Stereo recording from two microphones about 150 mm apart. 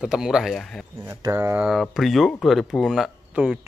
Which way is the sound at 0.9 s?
20° right (ahead or behind).